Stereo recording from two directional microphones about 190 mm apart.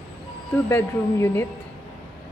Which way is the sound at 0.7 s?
15° left (ahead or behind).